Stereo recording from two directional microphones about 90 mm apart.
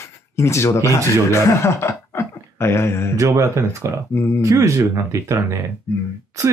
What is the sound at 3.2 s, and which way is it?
Speech, 35° right (ahead or behind).